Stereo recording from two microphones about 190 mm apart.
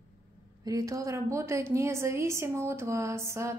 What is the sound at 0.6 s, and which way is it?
A woman's voice, 15° right (ahead or behind).